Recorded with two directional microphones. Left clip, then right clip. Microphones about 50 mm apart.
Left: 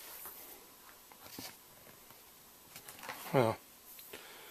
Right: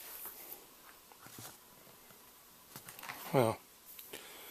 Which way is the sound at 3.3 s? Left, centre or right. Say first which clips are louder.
Even; right.